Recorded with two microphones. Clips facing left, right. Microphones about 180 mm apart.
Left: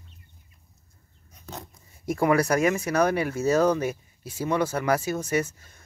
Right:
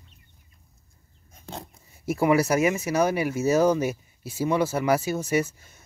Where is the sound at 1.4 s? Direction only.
30° right (ahead or behind).